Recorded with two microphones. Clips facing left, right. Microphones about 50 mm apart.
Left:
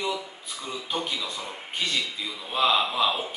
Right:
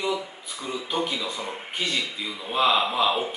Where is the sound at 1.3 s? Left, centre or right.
Right.